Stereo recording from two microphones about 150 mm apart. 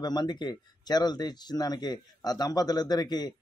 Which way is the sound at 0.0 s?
30° left (ahead or behind).